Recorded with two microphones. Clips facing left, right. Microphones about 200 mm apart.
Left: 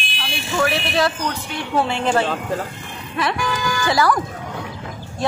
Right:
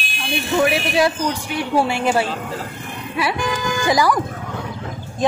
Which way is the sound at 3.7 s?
20° right (ahead or behind).